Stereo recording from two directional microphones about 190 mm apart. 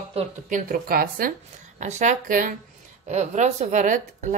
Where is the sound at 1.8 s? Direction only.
40° right (ahead or behind).